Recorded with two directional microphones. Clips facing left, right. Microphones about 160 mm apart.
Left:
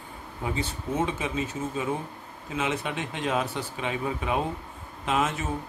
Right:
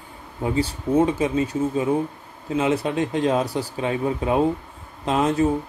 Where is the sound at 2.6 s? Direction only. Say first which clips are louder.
Right 8 dB; 35° right (ahead or behind).